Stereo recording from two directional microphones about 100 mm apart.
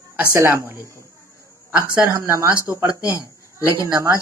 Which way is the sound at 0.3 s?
25° right (ahead or behind).